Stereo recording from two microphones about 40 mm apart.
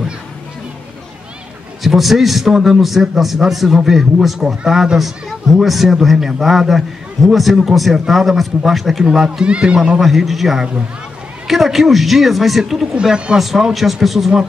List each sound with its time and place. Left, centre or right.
1.8 s a man's voice: centre
9.5 s speech: right
9.9 s a man's voice: centre
12.9 s speech: right
13.4 s a man's voice: centre